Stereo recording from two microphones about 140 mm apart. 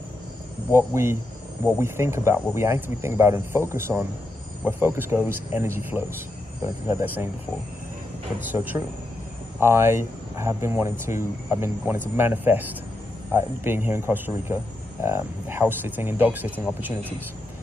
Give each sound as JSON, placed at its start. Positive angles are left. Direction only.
{"t": 0.7, "sound": "a man's voice", "side_deg": -15}
{"t": 8.4, "sound": "a man's voice", "side_deg": -15}